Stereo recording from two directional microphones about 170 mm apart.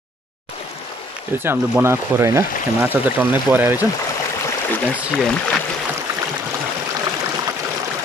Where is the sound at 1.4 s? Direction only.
15° right (ahead or behind).